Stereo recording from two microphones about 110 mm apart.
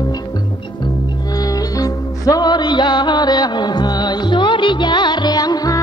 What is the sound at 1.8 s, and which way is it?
Music, 35° left (ahead or behind).